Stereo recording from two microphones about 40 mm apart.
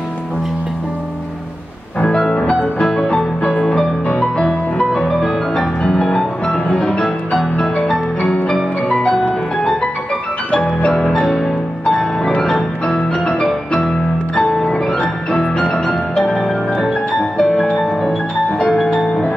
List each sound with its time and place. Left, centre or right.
2.0 s music: centre
5.6 s music: centre
7.6 s music: centre
10.9 s music: centre
12.4 s piano: centre
14.5 s music: centre
16.3 s music: centre